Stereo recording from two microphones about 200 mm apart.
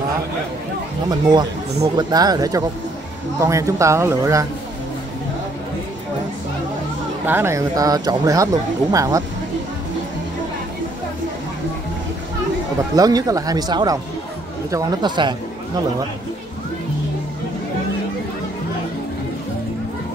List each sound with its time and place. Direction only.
1.0 s speech: 20° right (ahead or behind)
7.2 s speech: 10° right (ahead or behind)
12.9 s speech: 20° right (ahead or behind)